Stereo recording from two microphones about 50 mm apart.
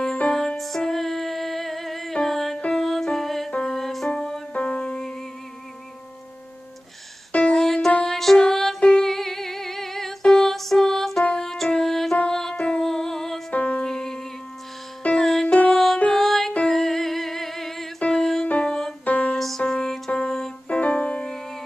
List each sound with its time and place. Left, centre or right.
0.0 s music: centre
0.6 s music: centre
4.1 s music: centre
7.5 s music: centre
12.5 s music: left
12.8 s music: centre
13.5 s music: left
13.8 s music: centre
15.4 s music: left
15.7 s music: centre; by 19.3 s left
19.3 s music: centre
20.6 s music: left